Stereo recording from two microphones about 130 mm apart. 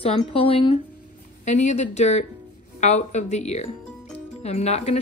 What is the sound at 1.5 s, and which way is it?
Speech, 65° left (ahead or behind).